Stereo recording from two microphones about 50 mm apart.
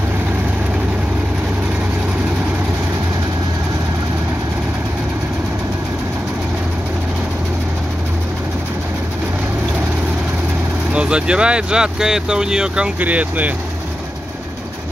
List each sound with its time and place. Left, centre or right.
10.9 s speech: right
13.0 s speech: right